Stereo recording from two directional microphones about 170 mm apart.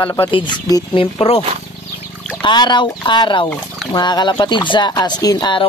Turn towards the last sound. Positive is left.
turn(degrees=25)  # may be behind; listen again after turning